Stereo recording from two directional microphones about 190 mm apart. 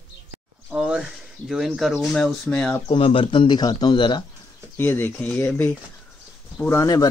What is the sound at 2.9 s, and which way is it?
Speech, 30° left (ahead or behind).